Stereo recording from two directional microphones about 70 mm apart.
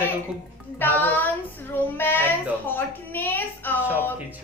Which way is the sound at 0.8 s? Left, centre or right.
Left.